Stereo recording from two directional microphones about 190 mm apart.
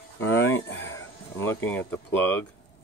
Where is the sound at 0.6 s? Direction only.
75° left (ahead or behind).